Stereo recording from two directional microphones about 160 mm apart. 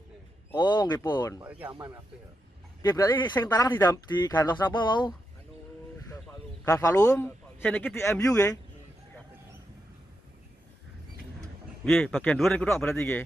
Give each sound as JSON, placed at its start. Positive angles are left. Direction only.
{"t": 0.6, "sound": "speech", "side_deg": 25}
{"t": 2.8, "sound": "a man's voice", "side_deg": 20}
{"t": 6.6, "sound": "a man's voice", "side_deg": 20}
{"t": 11.8, "sound": "a man's voice", "side_deg": 0}